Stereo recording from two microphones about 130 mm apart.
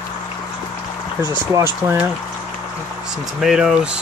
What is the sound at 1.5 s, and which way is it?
Speech, 20° right (ahead or behind).